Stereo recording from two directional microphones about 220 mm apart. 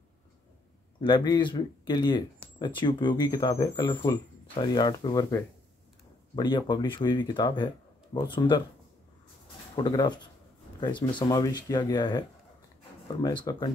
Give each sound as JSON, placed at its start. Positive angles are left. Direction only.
{"t": 1.0, "sound": "speech", "side_deg": 20}
{"t": 9.8, "sound": "speech", "side_deg": 20}